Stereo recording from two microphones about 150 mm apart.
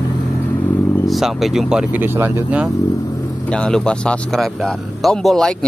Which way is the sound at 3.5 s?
5° left (ahead or behind).